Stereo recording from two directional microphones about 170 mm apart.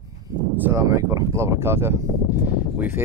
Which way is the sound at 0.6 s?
15° right (ahead or behind).